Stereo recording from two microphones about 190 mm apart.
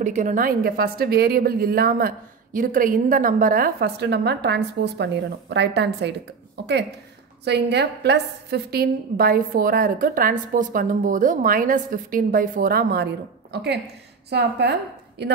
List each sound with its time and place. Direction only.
0.0 s a woman's voice: 40° right (ahead or behind); by 15.3 s 65° right (ahead or behind)